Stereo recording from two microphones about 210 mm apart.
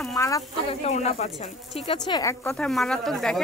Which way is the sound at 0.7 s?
30° left (ahead or behind).